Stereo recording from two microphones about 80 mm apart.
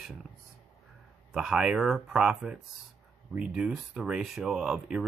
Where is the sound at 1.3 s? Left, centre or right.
Centre.